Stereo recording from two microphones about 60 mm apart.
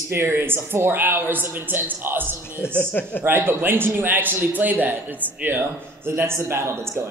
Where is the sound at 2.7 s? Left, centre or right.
Left.